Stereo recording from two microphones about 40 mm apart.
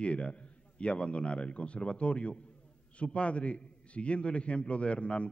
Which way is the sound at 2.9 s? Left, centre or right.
Left.